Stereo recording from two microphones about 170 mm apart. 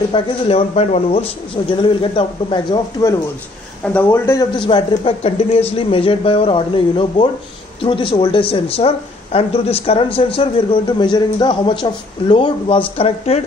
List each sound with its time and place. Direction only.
0.1 s speech: 35° left (ahead or behind)
3.8 s speech: 10° left (ahead or behind)
4.6 s speech: 30° left (ahead or behind)